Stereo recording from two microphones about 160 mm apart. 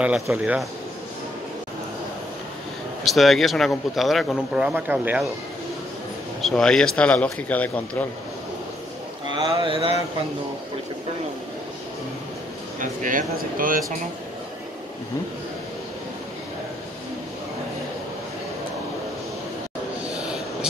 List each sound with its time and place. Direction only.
0.0 s speech: 5° right (ahead or behind)
3.1 s speech: centre (ahead or behind)
6.4 s speech: centre (ahead or behind)
9.6 s speech: 35° right (ahead or behind)
12.8 s speech: 55° right (ahead or behind)
20.2 s a sound: 5° right (ahead or behind)